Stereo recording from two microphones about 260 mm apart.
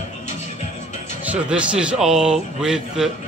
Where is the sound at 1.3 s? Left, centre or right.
Centre.